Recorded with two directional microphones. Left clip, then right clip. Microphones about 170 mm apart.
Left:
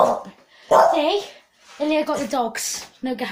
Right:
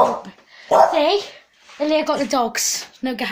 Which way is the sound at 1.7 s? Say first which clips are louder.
Right 3 dB; 25° right (ahead or behind).